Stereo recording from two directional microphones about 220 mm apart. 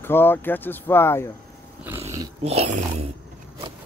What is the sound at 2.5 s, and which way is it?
Speech, 30° right (ahead or behind).